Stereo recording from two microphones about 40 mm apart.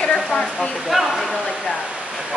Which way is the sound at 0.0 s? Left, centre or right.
Centre.